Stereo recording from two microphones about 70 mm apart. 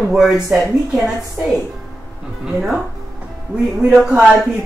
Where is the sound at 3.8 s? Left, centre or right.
Centre.